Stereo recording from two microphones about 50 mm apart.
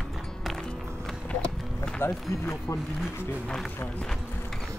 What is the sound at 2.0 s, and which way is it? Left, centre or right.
Speech, left.